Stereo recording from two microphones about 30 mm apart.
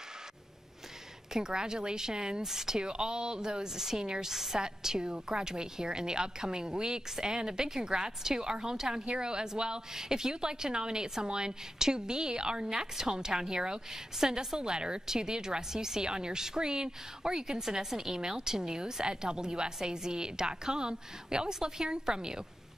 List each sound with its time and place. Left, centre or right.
1.3 s a woman's voice: right
2.8 s a woman's voice: right
4.3 s speech: centre
4.6 s a woman's voice: right